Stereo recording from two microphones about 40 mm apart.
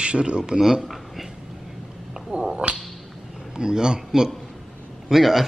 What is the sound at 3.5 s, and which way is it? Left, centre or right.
A man's voice, centre.